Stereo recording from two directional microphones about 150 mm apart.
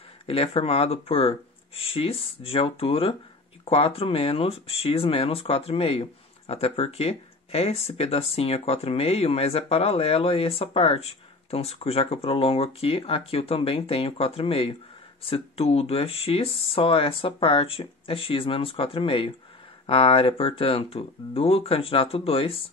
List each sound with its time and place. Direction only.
0.3 s speech: 40° left (ahead or behind)